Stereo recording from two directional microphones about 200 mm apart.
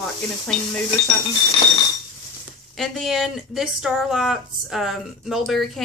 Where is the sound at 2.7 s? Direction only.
Centre (ahead or behind).